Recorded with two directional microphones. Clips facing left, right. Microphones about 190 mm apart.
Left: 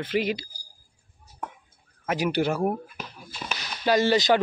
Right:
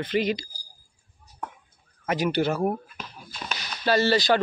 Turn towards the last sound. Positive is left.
turn(degrees=15)  # may be behind; listen again after turning